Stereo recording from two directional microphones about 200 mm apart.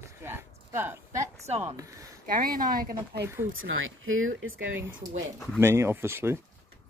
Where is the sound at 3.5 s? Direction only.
90° right.